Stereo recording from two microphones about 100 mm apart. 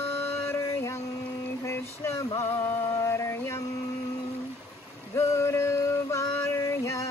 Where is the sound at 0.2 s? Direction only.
25° left (ahead or behind).